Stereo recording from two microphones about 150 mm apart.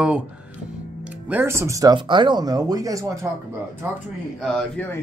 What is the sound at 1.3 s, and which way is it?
Speech, 15° right (ahead or behind).